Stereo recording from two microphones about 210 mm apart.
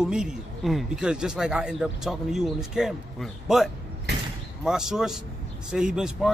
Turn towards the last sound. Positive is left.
turn(degrees=-5)  # may be behind; listen again after turning